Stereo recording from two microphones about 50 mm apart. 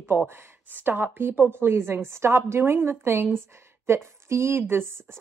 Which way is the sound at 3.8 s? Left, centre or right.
Right.